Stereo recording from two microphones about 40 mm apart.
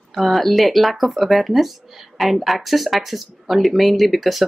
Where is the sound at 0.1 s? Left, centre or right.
Centre.